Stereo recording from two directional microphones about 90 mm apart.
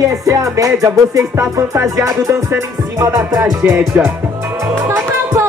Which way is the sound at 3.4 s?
30° right (ahead or behind).